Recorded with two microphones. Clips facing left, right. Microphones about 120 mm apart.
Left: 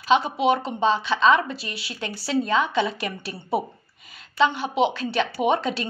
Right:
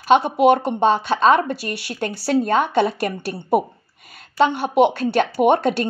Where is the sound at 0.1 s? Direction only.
55° right (ahead or behind).